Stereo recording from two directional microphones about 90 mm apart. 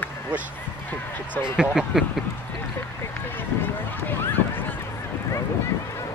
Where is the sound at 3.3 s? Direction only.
20° left (ahead or behind).